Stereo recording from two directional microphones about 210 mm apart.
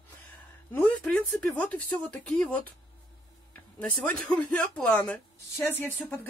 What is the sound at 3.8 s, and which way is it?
Speech, 5° left (ahead or behind).